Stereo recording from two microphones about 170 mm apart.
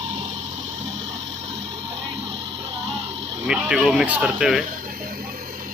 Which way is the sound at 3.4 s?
5° right (ahead or behind).